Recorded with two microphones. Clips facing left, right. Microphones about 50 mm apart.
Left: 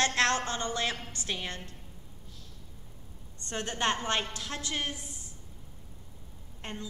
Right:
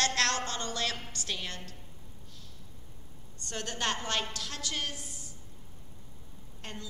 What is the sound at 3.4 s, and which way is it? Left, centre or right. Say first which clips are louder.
A woman's voice: left 3 dB; left.